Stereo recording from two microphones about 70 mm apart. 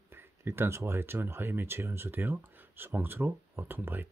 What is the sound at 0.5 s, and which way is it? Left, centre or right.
Speech, right.